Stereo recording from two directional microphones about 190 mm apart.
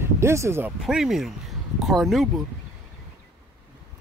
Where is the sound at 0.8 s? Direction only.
Centre (ahead or behind).